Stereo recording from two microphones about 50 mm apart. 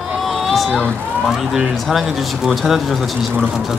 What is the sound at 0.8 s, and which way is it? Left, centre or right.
Speech, right.